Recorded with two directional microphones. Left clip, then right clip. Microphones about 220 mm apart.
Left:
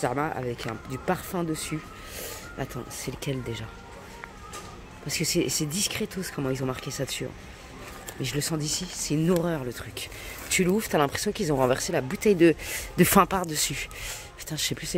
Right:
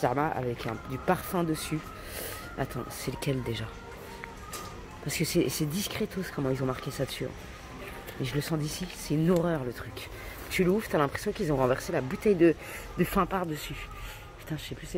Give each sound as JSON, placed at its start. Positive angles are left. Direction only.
{"t": 0.0, "sound": "speech", "side_deg": 10}
{"t": 5.0, "sound": "speech", "side_deg": 5}
{"t": 12.9, "sound": "speech", "side_deg": 35}